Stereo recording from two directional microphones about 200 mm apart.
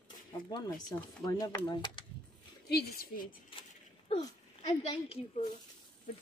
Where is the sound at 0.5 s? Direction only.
20° left (ahead or behind).